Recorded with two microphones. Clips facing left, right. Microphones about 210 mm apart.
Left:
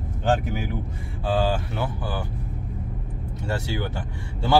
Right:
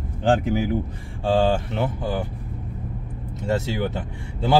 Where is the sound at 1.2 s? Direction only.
25° right (ahead or behind).